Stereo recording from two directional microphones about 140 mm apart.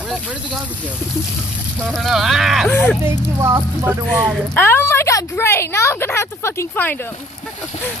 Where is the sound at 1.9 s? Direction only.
Centre (ahead or behind).